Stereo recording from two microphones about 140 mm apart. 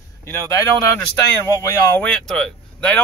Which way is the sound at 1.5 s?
20° left (ahead or behind).